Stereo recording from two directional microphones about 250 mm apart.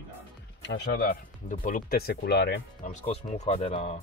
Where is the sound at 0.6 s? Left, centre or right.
Left.